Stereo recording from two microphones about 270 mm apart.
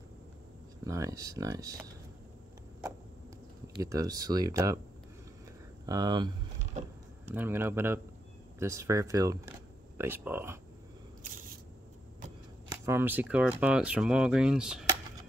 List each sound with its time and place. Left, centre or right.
0.8 s speech: centre
3.8 s speech: centre
5.9 s vehicle: centre
7.3 s speech: centre
12.8 s speech: centre